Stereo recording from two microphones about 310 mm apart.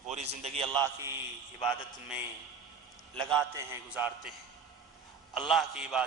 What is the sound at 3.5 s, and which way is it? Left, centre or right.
A woman's voice, centre.